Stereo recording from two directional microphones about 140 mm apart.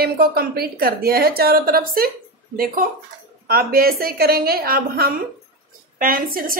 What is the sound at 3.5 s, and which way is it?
A woman's voice, 90° right.